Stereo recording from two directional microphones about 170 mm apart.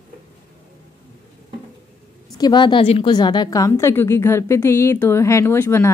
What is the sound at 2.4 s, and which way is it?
A woman's voice, 25° left (ahead or behind).